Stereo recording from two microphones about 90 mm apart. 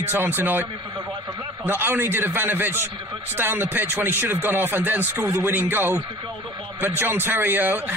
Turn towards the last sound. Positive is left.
turn(degrees=-20)  # may be behind; listen again after turning